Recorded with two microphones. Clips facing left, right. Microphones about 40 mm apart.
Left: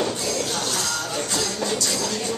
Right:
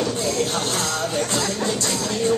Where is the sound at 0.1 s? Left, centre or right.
Right.